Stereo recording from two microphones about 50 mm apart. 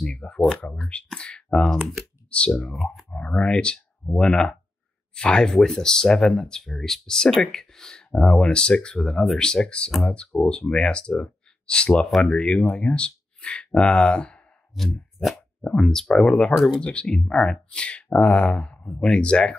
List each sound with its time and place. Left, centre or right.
0.0 s speech: centre
15.1 s plop: centre
15.7 s speech: centre
16.5 s speech: centre
16.8 s speech: centre